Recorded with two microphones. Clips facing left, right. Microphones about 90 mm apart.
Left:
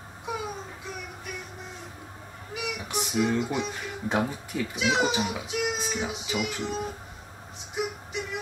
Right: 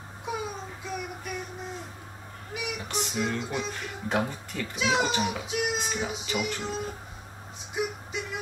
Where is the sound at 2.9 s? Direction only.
10° left (ahead or behind).